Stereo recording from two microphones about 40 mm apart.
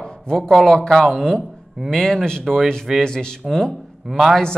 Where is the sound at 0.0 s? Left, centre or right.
Centre.